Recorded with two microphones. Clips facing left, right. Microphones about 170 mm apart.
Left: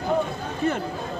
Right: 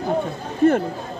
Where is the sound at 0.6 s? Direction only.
50° right (ahead or behind).